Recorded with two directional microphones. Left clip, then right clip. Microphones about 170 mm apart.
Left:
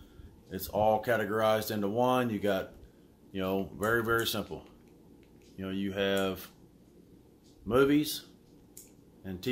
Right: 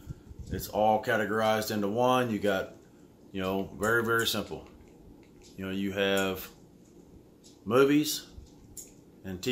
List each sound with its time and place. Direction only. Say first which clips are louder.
0.5 s speech: right 2 dB; 25° left (ahead or behind)
5.6 s speech: right 2 dB; 10° left (ahead or behind)
7.6 s speech: right 2 dB; 10° left (ahead or behind)
9.2 s speech: right 2 dB; 10° left (ahead or behind)